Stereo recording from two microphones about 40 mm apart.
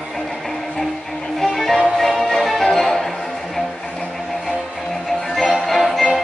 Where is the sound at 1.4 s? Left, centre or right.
Centre.